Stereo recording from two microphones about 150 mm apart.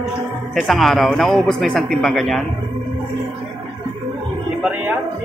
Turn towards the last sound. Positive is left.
turn(degrees=-10)  # may be behind; listen again after turning